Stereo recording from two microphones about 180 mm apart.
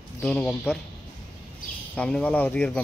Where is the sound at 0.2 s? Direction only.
5° left (ahead or behind).